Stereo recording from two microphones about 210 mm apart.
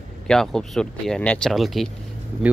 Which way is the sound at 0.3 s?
Centre (ahead or behind).